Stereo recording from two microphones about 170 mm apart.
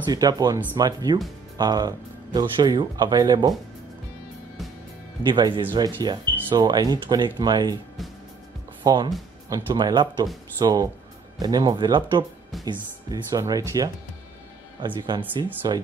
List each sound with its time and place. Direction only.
0.0 s speech: 25° right (ahead or behind)
5.2 s speech: 30° right (ahead or behind)
8.8 s speech: 25° right (ahead or behind)
15.0 s speech: 25° right (ahead or behind)